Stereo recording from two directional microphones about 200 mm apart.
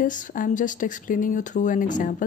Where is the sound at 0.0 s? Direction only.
40° left (ahead or behind).